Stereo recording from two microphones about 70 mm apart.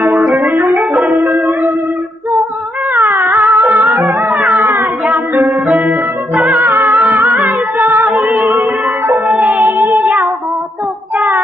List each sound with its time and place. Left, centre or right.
0.2 s music: centre
0.7 s music: centre
2.9 s cat: right
3.3 s music: right
4.0 s music: centre
4.6 s cat: right
5.4 s music: centre
7.0 s music: right